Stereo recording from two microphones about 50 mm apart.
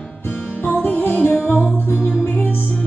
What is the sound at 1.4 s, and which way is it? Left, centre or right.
Music, right.